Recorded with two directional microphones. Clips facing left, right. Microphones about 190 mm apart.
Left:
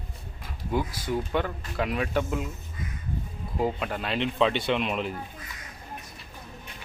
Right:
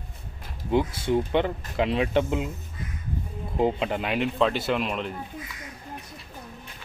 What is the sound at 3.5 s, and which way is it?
Speech, 20° right (ahead or behind).